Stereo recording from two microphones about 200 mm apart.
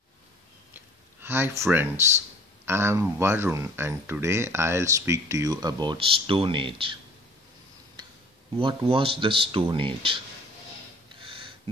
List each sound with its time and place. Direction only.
1.2 s speech: 10° right (ahead or behind)
8.5 s speech: 25° right (ahead or behind)
11.1 s a sound: 25° right (ahead or behind)